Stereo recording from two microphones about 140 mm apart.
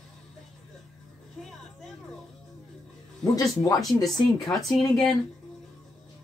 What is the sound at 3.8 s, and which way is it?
Speech, centre (ahead or behind).